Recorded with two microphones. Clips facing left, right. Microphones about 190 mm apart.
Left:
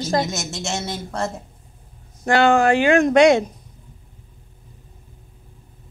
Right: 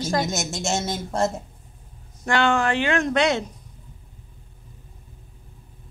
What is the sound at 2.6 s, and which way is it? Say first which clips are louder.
Speech: left 7 dB; 10° left (ahead or behind).